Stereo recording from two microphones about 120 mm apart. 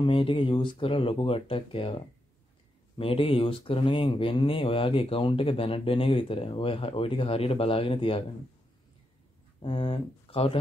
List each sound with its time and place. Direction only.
0.0 s speech: 50° left (ahead or behind)
9.6 s speech: 45° left (ahead or behind)